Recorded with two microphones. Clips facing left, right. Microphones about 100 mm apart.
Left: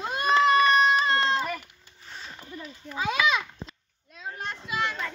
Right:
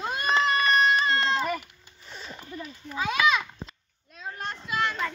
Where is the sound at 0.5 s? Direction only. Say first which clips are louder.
Left 2 dB; 10° left (ahead or behind).